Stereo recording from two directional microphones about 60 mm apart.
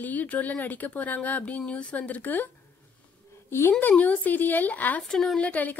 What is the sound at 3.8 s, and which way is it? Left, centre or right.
A woman's voice, left.